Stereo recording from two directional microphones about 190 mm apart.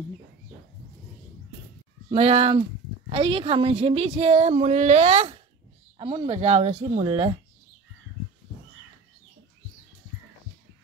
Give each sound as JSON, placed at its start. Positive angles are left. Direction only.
{"t": 2.0, "sound": "a woman's voice", "side_deg": -30}